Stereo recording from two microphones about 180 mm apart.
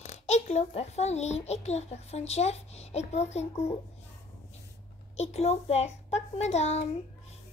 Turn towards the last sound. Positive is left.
turn(degrees=35)  # may be behind; listen again after turning